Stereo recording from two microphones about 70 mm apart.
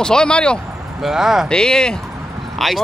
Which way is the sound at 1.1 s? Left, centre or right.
Centre.